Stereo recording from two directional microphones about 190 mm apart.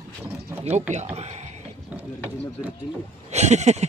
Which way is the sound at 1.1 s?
35° right (ahead or behind).